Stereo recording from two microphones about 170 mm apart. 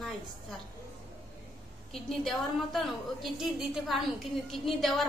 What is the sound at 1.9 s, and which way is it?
A woman's voice, centre (ahead or behind).